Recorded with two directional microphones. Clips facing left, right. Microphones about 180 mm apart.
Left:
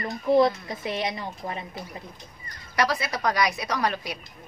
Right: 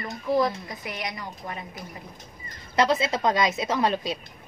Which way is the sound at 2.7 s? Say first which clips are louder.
Right 3 dB; 25° right (ahead or behind).